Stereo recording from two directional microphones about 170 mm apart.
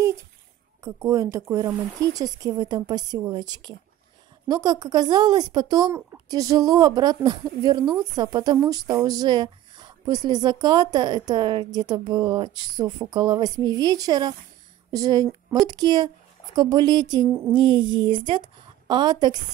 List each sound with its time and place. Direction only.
0.8 s a woman's voice: 20° right (ahead or behind)